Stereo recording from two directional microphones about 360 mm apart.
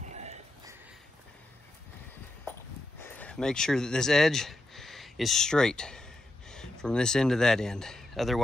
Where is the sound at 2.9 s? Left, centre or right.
Centre.